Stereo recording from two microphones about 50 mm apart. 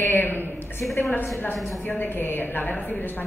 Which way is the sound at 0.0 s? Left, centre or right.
Left.